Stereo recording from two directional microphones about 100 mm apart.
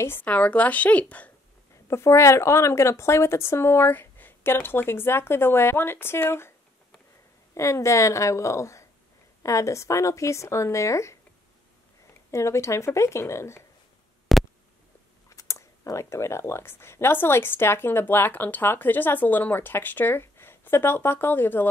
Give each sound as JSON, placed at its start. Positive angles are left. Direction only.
{"t": 0.0, "sound": "a woman's voice", "side_deg": 20}
{"t": 1.9, "sound": "speech", "side_deg": 30}
{"t": 7.5, "sound": "a woman's voice", "side_deg": 30}
{"t": 12.3, "sound": "speech", "side_deg": 30}
{"t": 14.3, "sound": "a sound", "side_deg": 0}
{"t": 15.2, "sound": "speech", "side_deg": 30}